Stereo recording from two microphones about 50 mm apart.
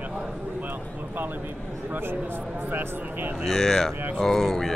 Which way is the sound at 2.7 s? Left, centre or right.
Right.